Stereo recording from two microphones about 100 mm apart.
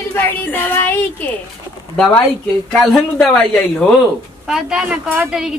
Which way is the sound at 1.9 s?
5° left (ahead or behind).